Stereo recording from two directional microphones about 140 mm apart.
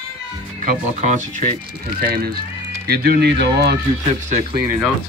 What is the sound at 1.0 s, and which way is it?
Speech, 60° right (ahead or behind).